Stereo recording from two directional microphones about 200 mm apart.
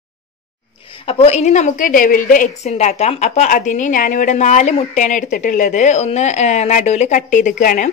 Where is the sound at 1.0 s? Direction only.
30° left (ahead or behind).